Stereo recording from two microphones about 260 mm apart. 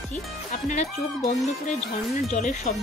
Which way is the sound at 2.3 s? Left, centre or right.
Left.